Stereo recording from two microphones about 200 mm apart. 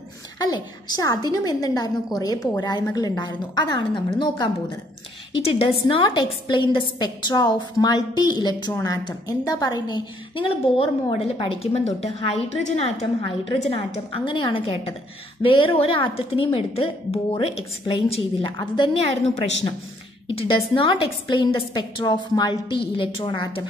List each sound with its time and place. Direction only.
0.4 s a woman's voice: 20° left (ahead or behind)
5.4 s a woman's voice: 25° left (ahead or behind)
20.2 s a woman's voice: 25° left (ahead or behind)